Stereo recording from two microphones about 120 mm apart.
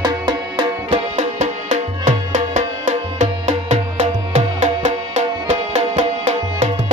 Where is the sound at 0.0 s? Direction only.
45° right (ahead or behind).